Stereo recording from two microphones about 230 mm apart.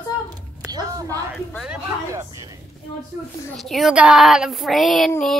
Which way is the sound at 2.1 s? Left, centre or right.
Centre.